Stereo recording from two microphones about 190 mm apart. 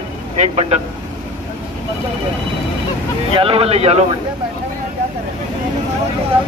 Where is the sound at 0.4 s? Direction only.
35° right (ahead or behind).